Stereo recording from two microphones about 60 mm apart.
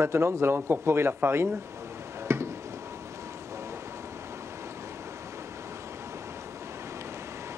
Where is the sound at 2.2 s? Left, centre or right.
Right.